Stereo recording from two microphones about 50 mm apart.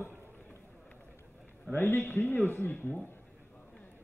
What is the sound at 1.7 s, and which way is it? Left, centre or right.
Speech, left.